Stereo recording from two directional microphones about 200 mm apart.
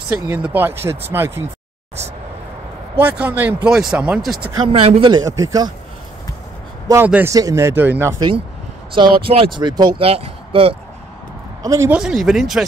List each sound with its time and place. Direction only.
0.1 s speech: 10° right (ahead or behind)
3.0 s speech: 10° right (ahead or behind)
4.6 s speech: 30° right (ahead or behind)
6.9 s speech: 10° right (ahead or behind); by 10.8 s 30° right (ahead or behind)
11.6 s speech: 15° right (ahead or behind)
12.0 s speech: centre (ahead or behind)